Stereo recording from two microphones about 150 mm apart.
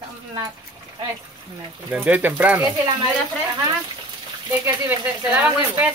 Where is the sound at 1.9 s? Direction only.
10° right (ahead or behind).